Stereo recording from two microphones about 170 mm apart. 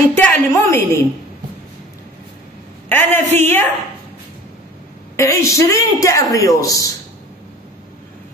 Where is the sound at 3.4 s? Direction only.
15° left (ahead or behind).